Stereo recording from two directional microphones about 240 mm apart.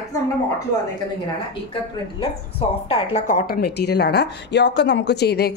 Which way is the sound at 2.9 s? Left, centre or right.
Left.